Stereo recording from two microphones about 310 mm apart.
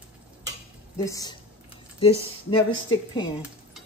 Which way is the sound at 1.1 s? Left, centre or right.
Centre.